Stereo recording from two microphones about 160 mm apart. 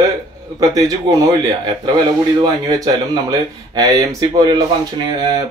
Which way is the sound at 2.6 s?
25° right (ahead or behind).